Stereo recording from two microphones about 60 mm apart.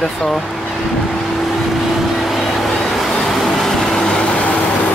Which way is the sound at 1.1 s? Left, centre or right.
Centre.